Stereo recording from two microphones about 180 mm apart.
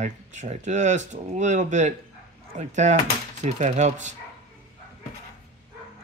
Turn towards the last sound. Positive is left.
turn(degrees=-40)  # may be behind; listen again after turning